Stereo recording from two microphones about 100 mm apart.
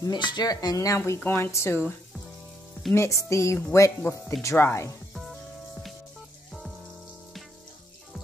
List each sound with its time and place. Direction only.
0.0 s speech: 50° left (ahead or behind); by 4.9 s 25° left (ahead or behind)
5.1 s music: centre (ahead or behind)